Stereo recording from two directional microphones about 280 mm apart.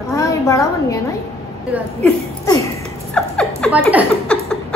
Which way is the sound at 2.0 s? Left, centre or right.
Centre.